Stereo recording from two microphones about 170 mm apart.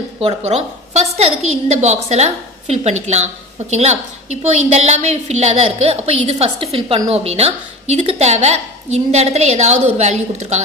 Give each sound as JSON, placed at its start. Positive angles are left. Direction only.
{"t": 0.2, "sound": "a woman's voice", "side_deg": -35}